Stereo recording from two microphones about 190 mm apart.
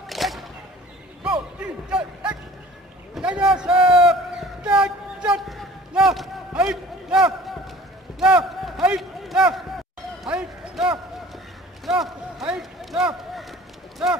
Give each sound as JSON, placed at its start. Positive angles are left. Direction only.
{"t": 0.1, "sound": "whip", "side_deg": 0}
{"t": 1.9, "sound": "speech", "side_deg": -5}
{"t": 3.7, "sound": "a man's voice", "side_deg": -25}
{"t": 4.0, "sound": "a sound", "side_deg": -5}
{"t": 11.8, "sound": "run", "side_deg": 0}